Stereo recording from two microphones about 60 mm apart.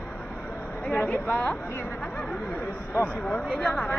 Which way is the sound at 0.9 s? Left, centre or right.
Left.